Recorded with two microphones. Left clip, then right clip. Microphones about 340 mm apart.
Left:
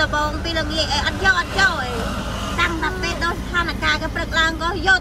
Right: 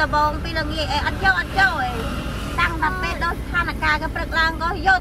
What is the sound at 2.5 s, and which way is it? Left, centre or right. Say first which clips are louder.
Speech: right 1 dB; centre.